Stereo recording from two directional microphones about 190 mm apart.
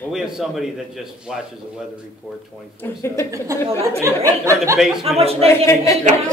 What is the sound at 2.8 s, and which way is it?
Speech, 15° left (ahead or behind).